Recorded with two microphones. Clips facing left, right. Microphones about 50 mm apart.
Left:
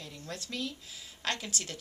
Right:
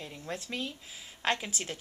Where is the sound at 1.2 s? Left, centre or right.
Right.